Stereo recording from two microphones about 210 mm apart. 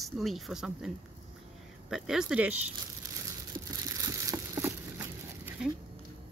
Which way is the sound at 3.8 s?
15° right (ahead or behind).